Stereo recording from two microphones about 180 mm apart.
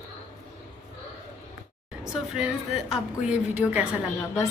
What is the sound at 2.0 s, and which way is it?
A woman's voice, 5° right (ahead or behind).